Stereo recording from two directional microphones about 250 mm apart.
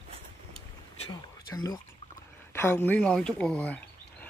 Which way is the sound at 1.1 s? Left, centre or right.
Centre.